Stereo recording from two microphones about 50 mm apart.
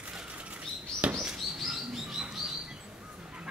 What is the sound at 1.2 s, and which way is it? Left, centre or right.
Bird, centre.